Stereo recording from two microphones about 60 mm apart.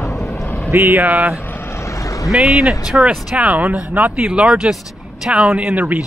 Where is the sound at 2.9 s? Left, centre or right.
Right.